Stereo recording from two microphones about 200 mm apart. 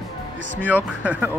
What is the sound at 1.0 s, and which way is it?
Speech, 10° right (ahead or behind).